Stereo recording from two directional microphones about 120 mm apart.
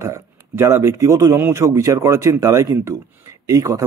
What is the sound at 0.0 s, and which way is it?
Speech, 25° right (ahead or behind).